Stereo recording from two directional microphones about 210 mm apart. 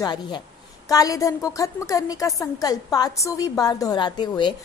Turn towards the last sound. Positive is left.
turn(degrees=20)  # may be behind; listen again after turning